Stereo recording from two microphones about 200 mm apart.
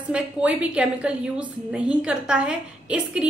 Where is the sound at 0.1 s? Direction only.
5° right (ahead or behind).